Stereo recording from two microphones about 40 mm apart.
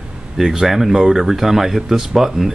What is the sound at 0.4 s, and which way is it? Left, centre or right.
Speech, centre.